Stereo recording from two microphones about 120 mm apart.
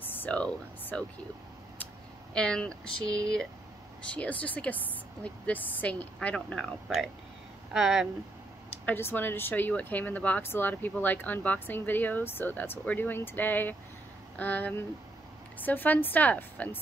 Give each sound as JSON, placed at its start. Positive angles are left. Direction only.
{"t": 0.0, "sound": "speech", "side_deg": 15}
{"t": 2.3, "sound": "speech", "side_deg": 5}
{"t": 4.1, "sound": "speech", "side_deg": 10}
{"t": 8.8, "sound": "speech", "side_deg": 15}